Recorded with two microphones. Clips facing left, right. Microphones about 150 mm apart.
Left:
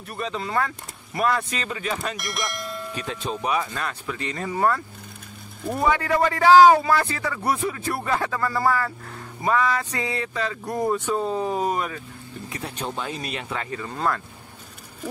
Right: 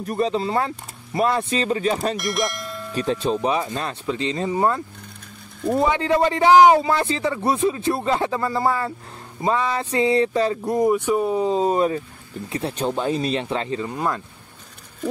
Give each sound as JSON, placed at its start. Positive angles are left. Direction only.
{"t": 0.0, "sound": "speech", "side_deg": -35}
{"t": 2.1, "sound": "speech", "side_deg": 0}
{"t": 2.9, "sound": "speech", "side_deg": -35}
{"t": 10.9, "sound": "speech", "side_deg": -15}